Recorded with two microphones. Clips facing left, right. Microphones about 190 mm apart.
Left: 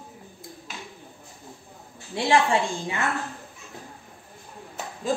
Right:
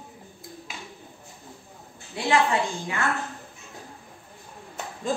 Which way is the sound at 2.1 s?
25° left (ahead or behind).